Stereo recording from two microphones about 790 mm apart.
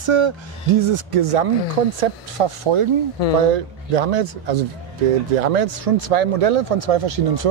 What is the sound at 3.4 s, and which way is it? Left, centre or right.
Speech, right.